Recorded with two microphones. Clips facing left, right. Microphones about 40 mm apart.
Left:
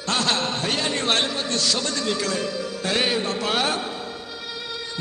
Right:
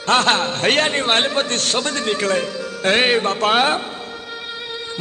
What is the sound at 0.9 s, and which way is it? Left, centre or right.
Speech, right.